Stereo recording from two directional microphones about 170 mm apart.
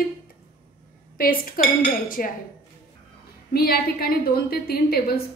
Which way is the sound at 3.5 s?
65° left (ahead or behind).